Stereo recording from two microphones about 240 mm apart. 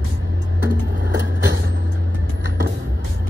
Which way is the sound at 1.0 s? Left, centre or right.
Right.